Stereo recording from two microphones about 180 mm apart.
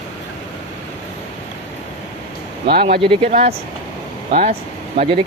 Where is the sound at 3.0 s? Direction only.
30° right (ahead or behind).